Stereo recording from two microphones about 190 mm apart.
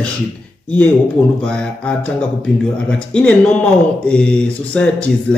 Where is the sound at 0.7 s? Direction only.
10° left (ahead or behind).